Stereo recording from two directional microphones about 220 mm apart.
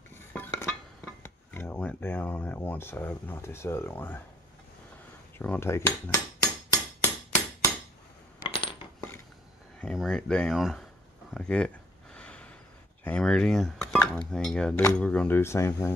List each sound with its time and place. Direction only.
0.3 s chink: 10° left (ahead or behind)
1.2 s a sound: 10° left (ahead or behind)
5.4 s speech: 10° left (ahead or behind)
8.4 s coin: 25° left (ahead or behind)
9.8 s speech: centre (ahead or behind)
11.3 s a sound: 5° left (ahead or behind)
13.0 s speech: 5° left (ahead or behind)